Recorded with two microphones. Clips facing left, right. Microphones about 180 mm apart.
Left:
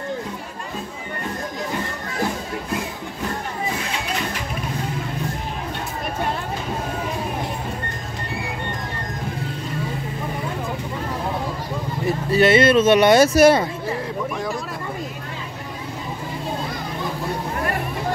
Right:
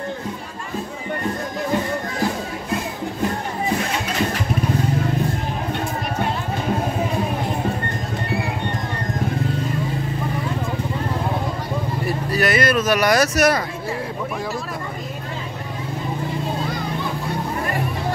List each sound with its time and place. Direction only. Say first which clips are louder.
12.3 s speech: left 5 dB; 25° left (ahead or behind)